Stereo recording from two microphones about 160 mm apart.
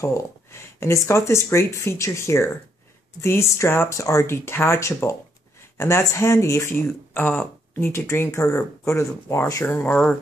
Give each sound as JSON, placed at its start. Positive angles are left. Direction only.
{"t": 0.0, "sound": "speech", "side_deg": 20}